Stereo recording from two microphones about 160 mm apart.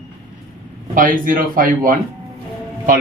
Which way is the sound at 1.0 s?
55° right (ahead or behind).